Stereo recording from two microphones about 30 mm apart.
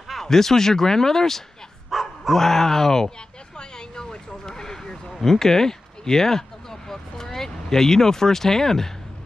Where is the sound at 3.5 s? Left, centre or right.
Left.